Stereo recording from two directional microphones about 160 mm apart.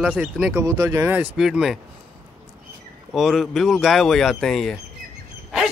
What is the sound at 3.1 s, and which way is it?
Speech, centre (ahead or behind).